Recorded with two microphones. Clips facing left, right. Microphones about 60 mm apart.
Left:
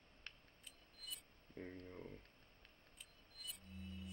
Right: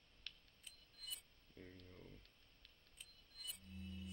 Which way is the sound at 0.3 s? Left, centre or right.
Left.